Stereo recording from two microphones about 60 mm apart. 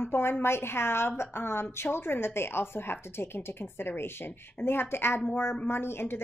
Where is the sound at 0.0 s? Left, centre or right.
Left.